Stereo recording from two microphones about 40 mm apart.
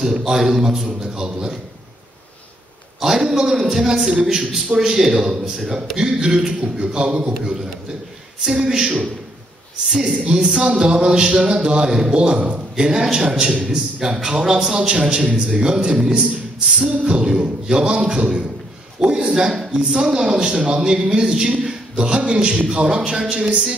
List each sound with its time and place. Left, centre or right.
0.0 s a man's voice: centre
3.0 s a man's voice: centre
8.5 s a man's voice: centre
10.6 s a man's voice: right
18.9 s a sound: right
19.9 s a man's voice: centre